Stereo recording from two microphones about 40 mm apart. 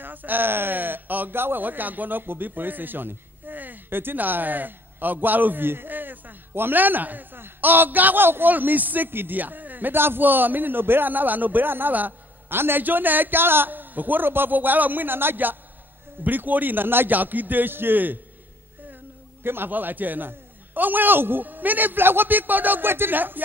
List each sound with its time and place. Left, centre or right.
0.0 s speech: right
7.6 s a man's voice: right
9.4 s a man's voice: right
10.2 s a man's voice: right
12.8 s a man's voice: right
17.1 s a man's voice: right
19.4 s a man's voice: right
19.7 s a man's voice: right